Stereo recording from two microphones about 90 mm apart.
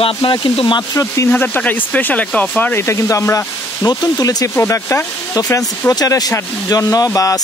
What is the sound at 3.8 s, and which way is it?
Speech, 50° left (ahead or behind).